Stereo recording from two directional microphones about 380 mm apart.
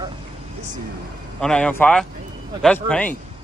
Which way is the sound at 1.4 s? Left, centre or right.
Centre.